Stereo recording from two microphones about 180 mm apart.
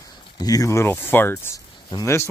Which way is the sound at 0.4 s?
20° left (ahead or behind).